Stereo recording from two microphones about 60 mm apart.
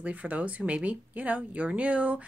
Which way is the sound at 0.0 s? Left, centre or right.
Right.